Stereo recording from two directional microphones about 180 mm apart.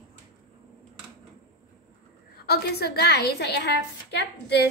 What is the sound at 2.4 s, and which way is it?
A woman's voice, 65° left (ahead or behind).